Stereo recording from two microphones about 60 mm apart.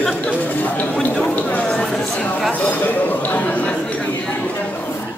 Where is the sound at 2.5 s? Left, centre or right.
Left.